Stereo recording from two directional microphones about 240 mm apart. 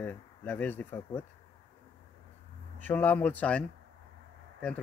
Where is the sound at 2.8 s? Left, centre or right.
Centre.